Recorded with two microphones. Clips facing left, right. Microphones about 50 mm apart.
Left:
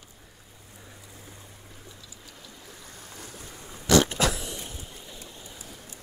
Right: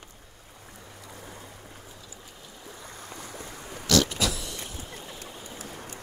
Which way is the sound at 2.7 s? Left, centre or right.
Right.